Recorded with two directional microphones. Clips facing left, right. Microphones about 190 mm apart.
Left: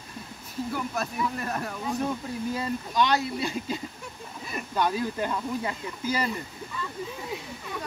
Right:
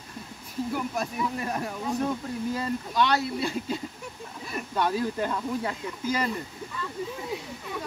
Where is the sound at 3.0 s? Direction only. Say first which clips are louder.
Even; 15° left (ahead or behind).